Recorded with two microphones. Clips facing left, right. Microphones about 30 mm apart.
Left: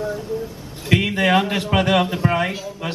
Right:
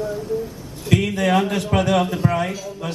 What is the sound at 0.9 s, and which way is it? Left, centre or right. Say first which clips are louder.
A man's voice: left 1 dB; left.